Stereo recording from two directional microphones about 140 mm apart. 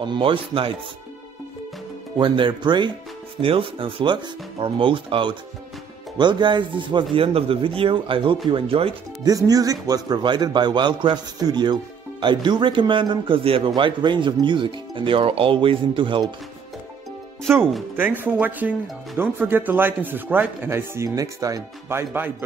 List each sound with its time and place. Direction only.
0.0 s a man's voice: 35° right (ahead or behind)
2.1 s a man's voice: 35° right (ahead or behind)
9.2 s a man's voice: 25° right (ahead or behind)
17.5 s speech: 15° right (ahead or behind)